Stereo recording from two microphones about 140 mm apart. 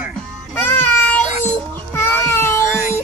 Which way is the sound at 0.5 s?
15° left (ahead or behind).